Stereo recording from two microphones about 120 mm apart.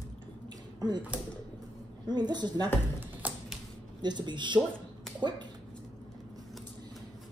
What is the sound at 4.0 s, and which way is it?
Speech, 40° right (ahead or behind).